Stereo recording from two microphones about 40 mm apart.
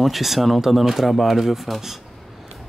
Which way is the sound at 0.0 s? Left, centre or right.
Centre.